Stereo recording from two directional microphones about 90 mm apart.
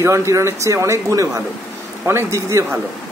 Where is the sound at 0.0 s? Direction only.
35° right (ahead or behind).